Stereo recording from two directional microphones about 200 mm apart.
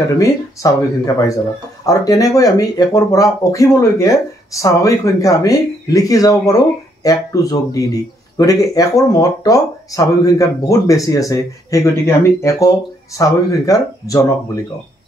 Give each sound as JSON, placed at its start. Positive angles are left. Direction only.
{"t": 0.2, "sound": "speech", "side_deg": 15}